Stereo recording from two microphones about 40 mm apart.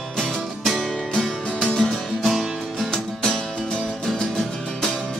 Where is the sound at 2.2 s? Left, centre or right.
Centre.